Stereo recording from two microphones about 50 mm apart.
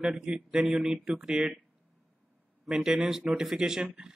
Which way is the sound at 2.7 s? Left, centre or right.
Centre.